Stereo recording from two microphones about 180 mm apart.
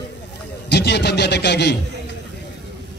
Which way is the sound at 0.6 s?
65° left (ahead or behind).